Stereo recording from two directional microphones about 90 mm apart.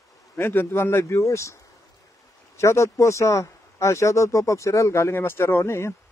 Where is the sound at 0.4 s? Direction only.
25° left (ahead or behind).